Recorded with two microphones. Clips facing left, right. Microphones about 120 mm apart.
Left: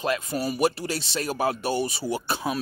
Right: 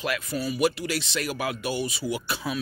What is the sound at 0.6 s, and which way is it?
Speech, 30° left (ahead or behind).